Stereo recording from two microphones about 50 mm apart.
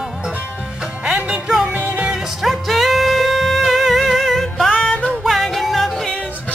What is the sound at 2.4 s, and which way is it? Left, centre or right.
Music, centre.